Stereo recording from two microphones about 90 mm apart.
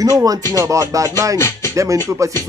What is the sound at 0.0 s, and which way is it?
Speech, 40° right (ahead or behind).